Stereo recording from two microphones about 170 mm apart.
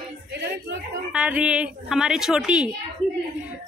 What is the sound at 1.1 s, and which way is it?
A woman's voice, 5° right (ahead or behind).